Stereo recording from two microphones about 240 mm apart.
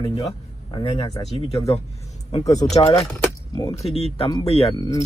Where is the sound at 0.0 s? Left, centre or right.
Left.